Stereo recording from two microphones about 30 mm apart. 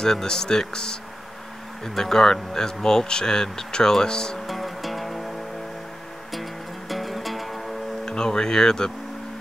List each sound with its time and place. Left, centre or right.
0.0 s speech: centre
2.0 s speech: centre
4.5 s music: centre
6.9 s music: centre
8.0 s speech: left